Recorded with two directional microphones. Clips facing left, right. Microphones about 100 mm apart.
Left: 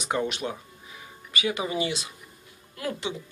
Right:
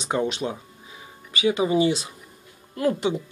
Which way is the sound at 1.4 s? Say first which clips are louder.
Right 8 dB; 25° right (ahead or behind).